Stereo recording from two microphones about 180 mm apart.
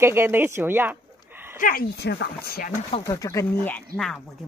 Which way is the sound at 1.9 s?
65° left (ahead or behind).